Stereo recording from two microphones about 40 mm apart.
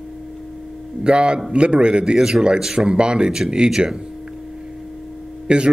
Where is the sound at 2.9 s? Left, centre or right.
Right.